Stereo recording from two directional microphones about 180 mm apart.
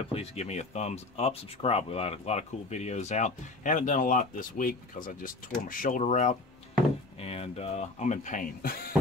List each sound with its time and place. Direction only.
0.0 s speech: 35° left (ahead or behind); by 8.9 s 55° left (ahead or behind)